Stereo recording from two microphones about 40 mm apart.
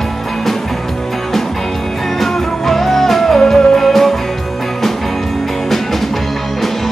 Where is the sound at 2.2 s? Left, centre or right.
Centre.